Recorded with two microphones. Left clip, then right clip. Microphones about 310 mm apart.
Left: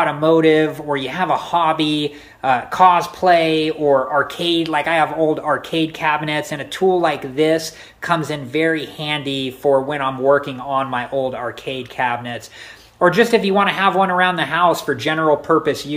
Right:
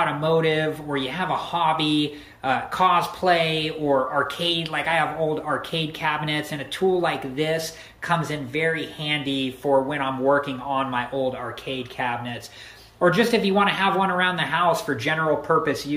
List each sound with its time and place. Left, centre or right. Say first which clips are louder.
0.0 s speech: left 7 dB; centre